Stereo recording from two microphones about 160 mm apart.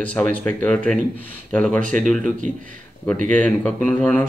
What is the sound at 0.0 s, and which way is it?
Speech, 10° left (ahead or behind).